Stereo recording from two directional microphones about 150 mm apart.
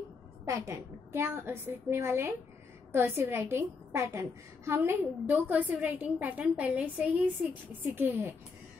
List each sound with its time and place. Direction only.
0.5 s a woman's voice: 20° right (ahead or behind)